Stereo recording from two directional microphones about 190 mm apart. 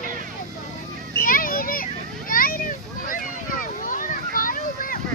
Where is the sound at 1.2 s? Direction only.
50° left (ahead or behind).